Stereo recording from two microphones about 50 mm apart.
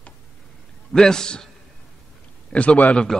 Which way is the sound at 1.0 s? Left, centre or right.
Centre.